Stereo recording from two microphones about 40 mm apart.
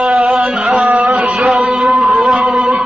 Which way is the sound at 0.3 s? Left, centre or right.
Centre.